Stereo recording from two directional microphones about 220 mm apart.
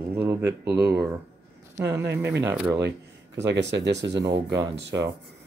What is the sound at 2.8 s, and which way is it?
Speech, 55° right (ahead or behind).